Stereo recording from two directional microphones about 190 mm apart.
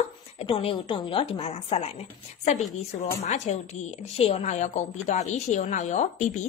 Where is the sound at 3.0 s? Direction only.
35° left (ahead or behind).